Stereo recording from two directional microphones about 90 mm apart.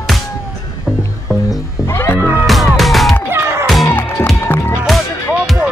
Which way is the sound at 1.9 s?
30° left (ahead or behind).